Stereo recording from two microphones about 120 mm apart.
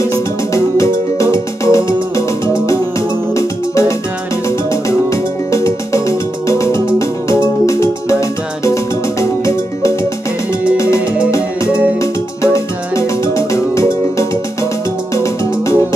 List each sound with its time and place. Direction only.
0.7 s music: 25° left (ahead or behind)
4.5 s music: 25° left (ahead or behind)
12.5 s music: 25° left (ahead or behind)